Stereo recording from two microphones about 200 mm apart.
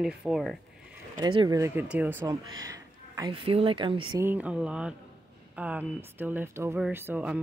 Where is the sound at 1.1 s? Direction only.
20° right (ahead or behind).